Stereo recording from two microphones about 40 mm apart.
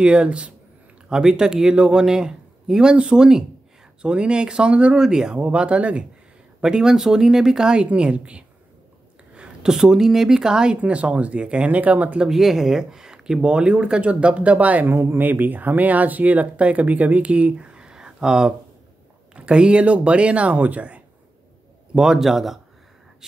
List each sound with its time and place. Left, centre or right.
0.0 s a man's voice: right
4.9 s a man's voice: centre
5.4 s speech: right
6.6 s a man's voice: centre; by 8.5 s right
9.3 s a sound: right
9.7 s a man's voice: centre
10.8 s speech: right
12.3 s speech: centre
13.4 s speech: right
14.9 s speech: right
15.2 s speech: right
21.9 s a man's voice: centre
22.2 s a man's voice: centre